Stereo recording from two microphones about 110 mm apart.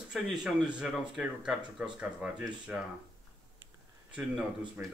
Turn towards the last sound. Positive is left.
turn(degrees=-15)  # may be behind; listen again after turning